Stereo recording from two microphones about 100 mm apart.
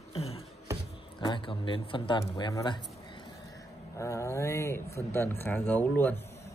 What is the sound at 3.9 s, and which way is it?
Speech, 30° left (ahead or behind).